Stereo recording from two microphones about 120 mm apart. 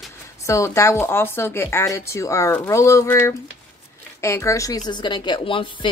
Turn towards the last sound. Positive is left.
turn(degrees=45)  # may be behind; listen again after turning